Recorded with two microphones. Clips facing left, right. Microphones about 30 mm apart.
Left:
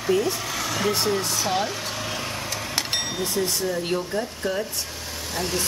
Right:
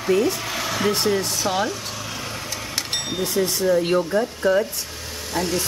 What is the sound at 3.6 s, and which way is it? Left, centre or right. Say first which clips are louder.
Speech: right 7 dB; right.